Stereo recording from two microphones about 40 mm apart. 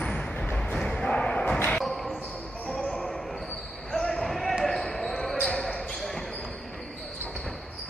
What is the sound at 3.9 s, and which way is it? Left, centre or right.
Basketball bounce, centre.